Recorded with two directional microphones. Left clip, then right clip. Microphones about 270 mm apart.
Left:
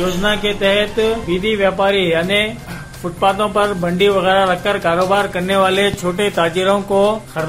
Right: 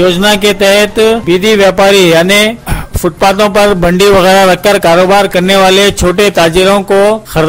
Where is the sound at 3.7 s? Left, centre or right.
Right.